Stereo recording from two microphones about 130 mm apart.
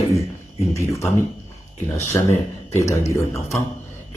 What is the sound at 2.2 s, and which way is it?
Speech, 15° left (ahead or behind).